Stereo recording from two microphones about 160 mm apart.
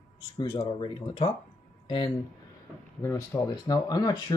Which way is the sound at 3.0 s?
20° left (ahead or behind).